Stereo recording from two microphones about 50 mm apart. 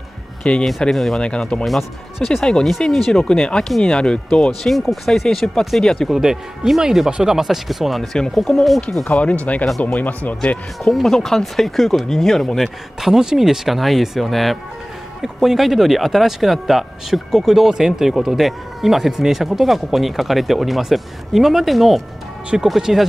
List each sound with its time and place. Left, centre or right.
0.4 s speech: centre
0.7 s speech: centre
1.2 s speech: left
1.6 s speech: centre
4.6 s speech: centre
6.0 s speech: centre
9.0 s speech: left
10.8 s speech: centre
12.6 s speech: centre